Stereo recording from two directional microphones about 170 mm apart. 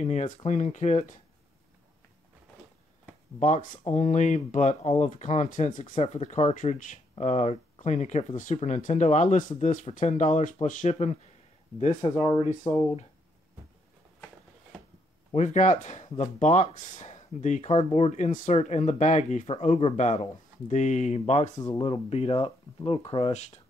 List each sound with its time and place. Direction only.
0.0 s speech: 40° left (ahead or behind)
3.3 s speech: 45° left (ahead or behind)
5.9 s speech: 35° left (ahead or behind)
15.3 s speech: 45° left (ahead or behind)